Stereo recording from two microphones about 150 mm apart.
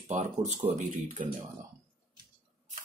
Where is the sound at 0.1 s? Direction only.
50° right (ahead or behind).